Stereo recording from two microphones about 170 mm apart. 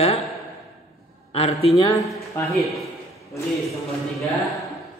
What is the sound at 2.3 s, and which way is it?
Speech, 20° left (ahead or behind).